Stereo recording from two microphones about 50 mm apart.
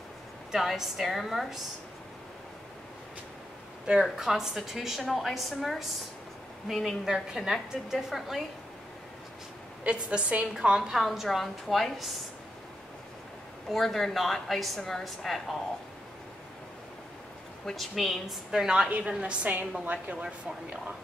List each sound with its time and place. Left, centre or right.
0.5 s a woman's voice: centre
4.0 s a woman's voice: centre
9.8 s a woman's voice: right; by 12.2 s centre
13.7 s a woman's voice: centre
17.6 s a woman's voice: centre
18.5 s a woman's voice: centre
18.9 s a woman's voice: right